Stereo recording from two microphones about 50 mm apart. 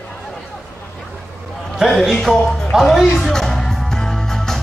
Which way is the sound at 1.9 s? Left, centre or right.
Centre.